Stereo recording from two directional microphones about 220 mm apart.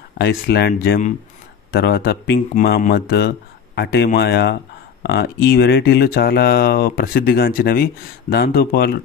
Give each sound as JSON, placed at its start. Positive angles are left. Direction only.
{"t": 0.2, "sound": "speech", "side_deg": 45}